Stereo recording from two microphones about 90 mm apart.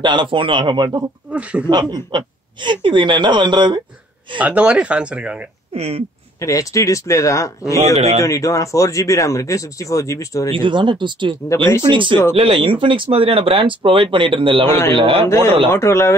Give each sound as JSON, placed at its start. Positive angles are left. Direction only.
{"t": 0.0, "sound": "a woman's voice", "side_deg": -60}
{"t": 1.3, "sound": "speech", "side_deg": -15}
{"t": 1.7, "sound": "a woman's voice", "side_deg": -50}
{"t": 4.4, "sound": "speech", "side_deg": -15}
{"t": 6.4, "sound": "speech", "side_deg": 40}
{"t": 10.5, "sound": "a woman's voice", "side_deg": -60}
{"t": 12.4, "sound": "speech", "side_deg": -85}
{"t": 15.2, "sound": "speech", "side_deg": 30}